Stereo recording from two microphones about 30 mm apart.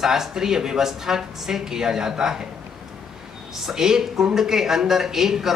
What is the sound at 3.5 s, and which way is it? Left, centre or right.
Speech, centre.